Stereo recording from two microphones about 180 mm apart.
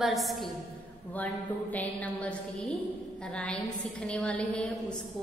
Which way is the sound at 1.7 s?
10° left (ahead or behind).